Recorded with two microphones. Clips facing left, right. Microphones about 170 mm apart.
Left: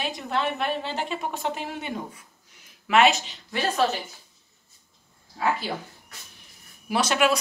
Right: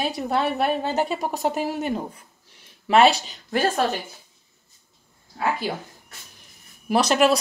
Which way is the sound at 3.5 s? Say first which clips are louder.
Right 4 dB; 45° right (ahead or behind).